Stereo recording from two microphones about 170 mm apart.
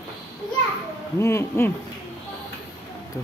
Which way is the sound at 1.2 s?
15° left (ahead or behind).